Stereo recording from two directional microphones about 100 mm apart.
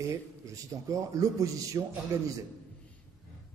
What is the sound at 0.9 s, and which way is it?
Speech, 35° right (ahead or behind).